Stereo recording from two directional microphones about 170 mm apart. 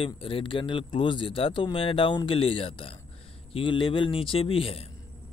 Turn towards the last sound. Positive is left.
turn(degrees=35)  # may be behind; listen again after turning